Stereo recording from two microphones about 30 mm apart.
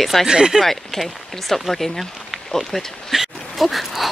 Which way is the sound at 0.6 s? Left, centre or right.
Centre.